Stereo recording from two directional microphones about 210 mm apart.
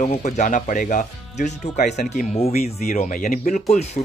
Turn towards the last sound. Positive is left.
turn(degrees=30)  # may be behind; listen again after turning